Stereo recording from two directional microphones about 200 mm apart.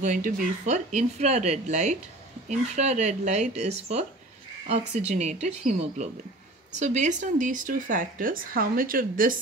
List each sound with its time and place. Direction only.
0.0 s speech: 40° right (ahead or behind)